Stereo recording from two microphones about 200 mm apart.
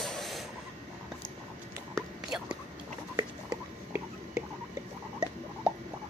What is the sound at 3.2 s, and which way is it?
Whispering, 15° right (ahead or behind).